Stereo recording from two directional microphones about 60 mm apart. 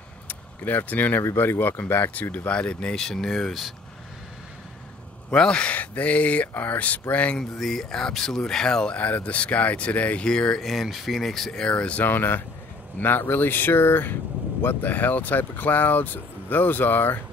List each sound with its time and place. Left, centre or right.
0.3 s speech: left; by 3.7 s centre
5.3 s speech: centre
7.3 s speech: centre
8.9 s speech: left
10.6 s speech: centre
12.0 s speech: left